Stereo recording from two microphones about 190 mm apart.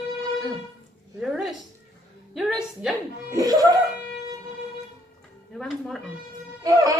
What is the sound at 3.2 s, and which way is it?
Music, 20° right (ahead or behind).